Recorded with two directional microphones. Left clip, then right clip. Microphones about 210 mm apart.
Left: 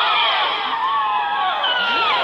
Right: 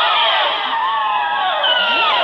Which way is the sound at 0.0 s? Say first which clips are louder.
Right 3 dB; 10° right (ahead or behind).